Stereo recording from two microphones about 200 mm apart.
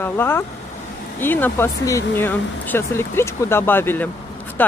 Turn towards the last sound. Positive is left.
turn(degrees=10)  # may be behind; listen again after turning